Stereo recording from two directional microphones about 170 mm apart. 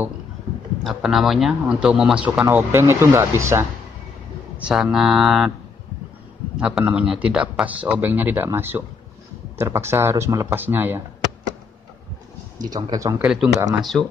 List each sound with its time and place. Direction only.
0.8 s speech: centre (ahead or behind)
2.4 s a man's voice: 15° right (ahead or behind)
6.5 s a man's voice: 5° right (ahead or behind)
12.5 s speech: 25° right (ahead or behind)
13.2 s speech: 5° right (ahead or behind)